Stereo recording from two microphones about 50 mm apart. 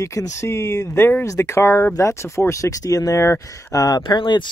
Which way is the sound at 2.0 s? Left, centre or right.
Left.